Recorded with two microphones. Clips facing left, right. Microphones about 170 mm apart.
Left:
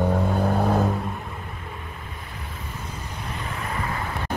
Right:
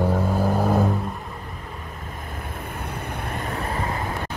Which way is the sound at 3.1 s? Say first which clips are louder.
Right 4 dB; 55° right (ahead or behind).